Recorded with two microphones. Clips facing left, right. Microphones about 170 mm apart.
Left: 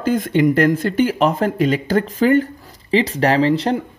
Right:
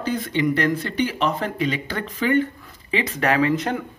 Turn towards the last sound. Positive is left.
turn(degrees=30)  # may be behind; listen again after turning